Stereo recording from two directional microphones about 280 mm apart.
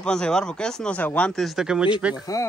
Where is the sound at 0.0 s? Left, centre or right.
Centre.